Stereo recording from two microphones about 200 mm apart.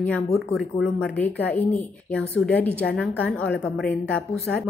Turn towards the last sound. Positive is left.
turn(degrees=5)  # may be behind; listen again after turning